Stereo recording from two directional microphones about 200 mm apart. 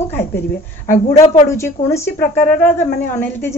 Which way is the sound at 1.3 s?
15° left (ahead or behind).